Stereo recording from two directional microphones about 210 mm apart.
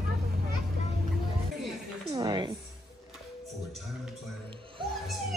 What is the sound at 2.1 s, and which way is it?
Music, 20° right (ahead or behind).